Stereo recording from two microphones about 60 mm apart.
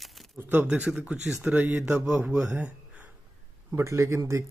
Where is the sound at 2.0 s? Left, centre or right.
Centre.